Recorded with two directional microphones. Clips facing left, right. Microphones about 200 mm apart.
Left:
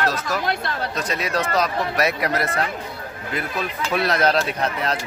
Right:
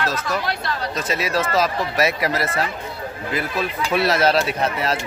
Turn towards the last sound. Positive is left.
turn(degrees=-5)  # may be behind; listen again after turning